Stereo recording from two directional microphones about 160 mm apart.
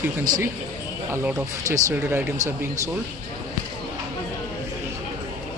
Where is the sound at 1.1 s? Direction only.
20° right (ahead or behind).